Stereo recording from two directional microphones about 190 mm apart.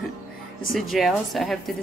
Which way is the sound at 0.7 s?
Centre (ahead or behind).